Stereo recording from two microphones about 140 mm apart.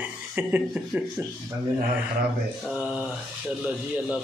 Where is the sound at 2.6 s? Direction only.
Centre (ahead or behind).